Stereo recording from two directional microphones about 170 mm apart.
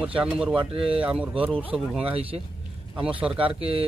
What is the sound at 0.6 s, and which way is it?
Speech, 35° right (ahead or behind).